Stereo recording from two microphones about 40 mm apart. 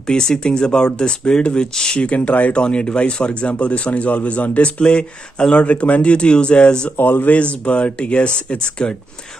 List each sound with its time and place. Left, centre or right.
0.0 s speech: centre
2.0 s speech: left
5.7 s speech: left
7.0 s speech: left
7.3 s speech: left